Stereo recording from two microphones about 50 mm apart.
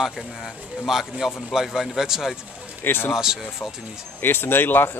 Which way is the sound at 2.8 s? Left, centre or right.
Left.